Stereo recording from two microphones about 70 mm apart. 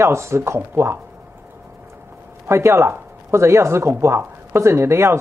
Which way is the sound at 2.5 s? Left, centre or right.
Right.